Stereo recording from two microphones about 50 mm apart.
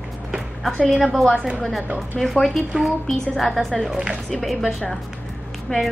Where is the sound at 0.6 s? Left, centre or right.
Centre.